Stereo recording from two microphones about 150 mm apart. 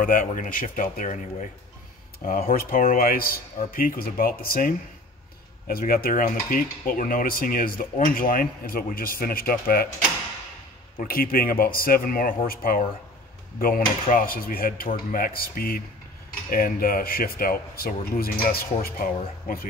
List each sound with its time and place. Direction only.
0.0 s speech: 60° left (ahead or behind)
2.1 s cutlery: 70° left (ahead or behind)
11.0 s cutlery: 80° left
16.4 s speech: 70° left (ahead or behind)